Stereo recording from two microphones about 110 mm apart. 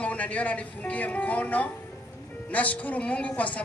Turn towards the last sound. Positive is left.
turn(degrees=15)  # may be behind; listen again after turning